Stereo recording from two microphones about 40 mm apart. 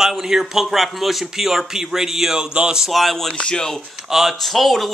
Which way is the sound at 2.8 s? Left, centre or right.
Centre.